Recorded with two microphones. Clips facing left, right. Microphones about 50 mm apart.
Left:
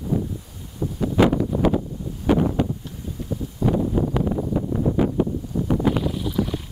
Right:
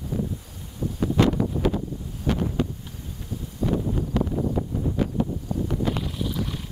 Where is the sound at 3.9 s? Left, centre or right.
Centre.